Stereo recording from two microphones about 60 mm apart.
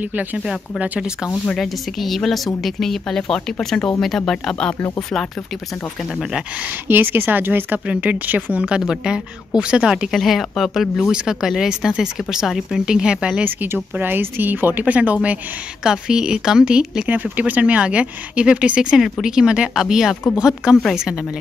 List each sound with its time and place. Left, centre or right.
0.0 s speech: right
1.5 s a woman's voice: centre
6.6 s speech: right
7.8 s speech: right
10.1 s a woman's voice: centre
11.1 s speech: centre
13.4 s speech: right
15.8 s speech: centre
17.1 s speech: right; by 21.3 s centre